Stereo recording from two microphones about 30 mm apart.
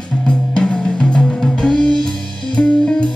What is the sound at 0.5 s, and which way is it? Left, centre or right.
Drum, left.